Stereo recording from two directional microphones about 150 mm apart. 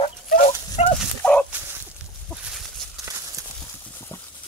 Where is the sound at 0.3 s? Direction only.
80° left.